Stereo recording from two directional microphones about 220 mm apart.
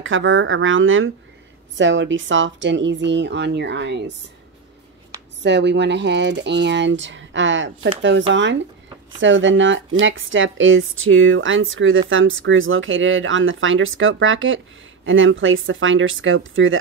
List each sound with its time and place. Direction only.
0.0 s speech: 60° right (ahead or behind)
5.4 s speech: 50° right (ahead or behind)